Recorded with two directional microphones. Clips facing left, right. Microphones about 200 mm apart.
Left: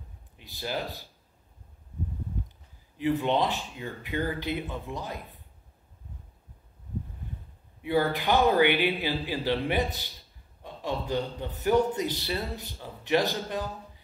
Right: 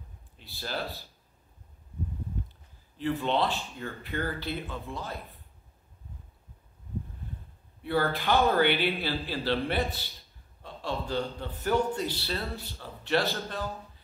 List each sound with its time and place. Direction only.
0.4 s a man's voice: 15° left (ahead or behind)
3.0 s a man's voice: 15° left (ahead or behind)
7.8 s a man's voice: 15° left (ahead or behind)